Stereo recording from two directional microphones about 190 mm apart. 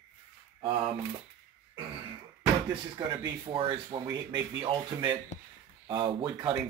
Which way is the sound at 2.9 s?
25° right (ahead or behind).